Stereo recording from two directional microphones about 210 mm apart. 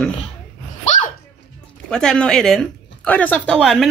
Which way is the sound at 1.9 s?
5° left (ahead or behind).